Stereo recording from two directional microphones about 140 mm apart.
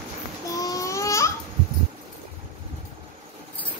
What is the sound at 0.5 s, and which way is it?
Babbling, 25° left (ahead or behind).